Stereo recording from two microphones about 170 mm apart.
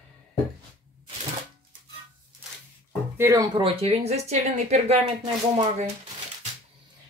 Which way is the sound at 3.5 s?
35° right (ahead or behind).